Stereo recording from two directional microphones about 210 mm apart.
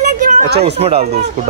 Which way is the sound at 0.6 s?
30° right (ahead or behind).